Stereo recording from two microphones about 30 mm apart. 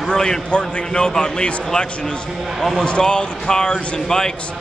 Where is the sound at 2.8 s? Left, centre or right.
Left.